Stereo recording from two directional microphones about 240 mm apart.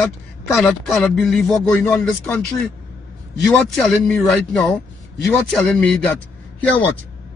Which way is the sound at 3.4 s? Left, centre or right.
Centre.